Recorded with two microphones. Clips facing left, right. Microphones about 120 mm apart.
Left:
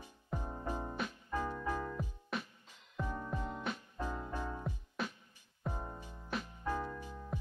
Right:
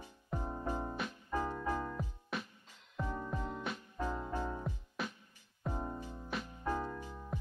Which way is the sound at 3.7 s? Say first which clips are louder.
Left 1 dB; centre (ahead or behind).